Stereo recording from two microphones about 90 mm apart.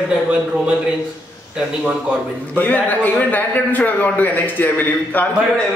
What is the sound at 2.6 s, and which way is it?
A man's voice, 20° left (ahead or behind).